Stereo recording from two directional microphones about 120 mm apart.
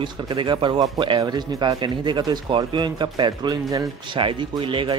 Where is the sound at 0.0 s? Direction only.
40° right (ahead or behind).